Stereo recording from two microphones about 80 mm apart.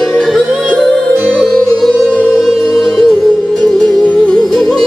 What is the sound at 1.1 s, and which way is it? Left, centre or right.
Music, right.